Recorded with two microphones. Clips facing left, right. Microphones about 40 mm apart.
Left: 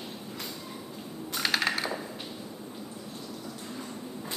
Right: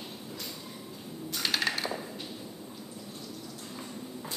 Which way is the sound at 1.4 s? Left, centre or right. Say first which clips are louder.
Left 2 dB; centre.